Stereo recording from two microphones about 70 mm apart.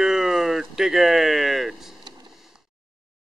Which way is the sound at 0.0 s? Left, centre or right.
Centre.